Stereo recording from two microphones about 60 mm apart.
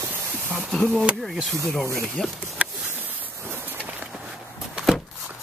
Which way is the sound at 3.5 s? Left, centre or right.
Right.